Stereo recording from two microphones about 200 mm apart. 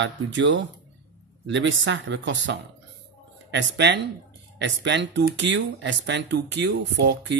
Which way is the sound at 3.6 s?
65° right (ahead or behind).